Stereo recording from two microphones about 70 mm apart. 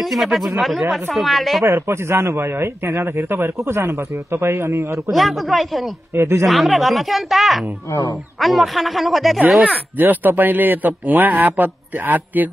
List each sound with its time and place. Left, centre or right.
0.0 s speech: centre
1.6 s a man's voice: right
5.1 s speech: centre
6.1 s a man's voice: right
6.4 s speech: centre
9.9 s a man's voice: right